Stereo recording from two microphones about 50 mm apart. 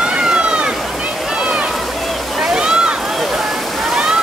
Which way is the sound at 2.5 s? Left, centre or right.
Centre.